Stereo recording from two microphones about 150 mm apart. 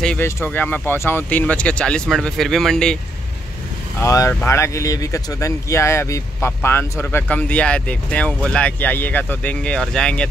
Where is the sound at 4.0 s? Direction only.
20° left (ahead or behind).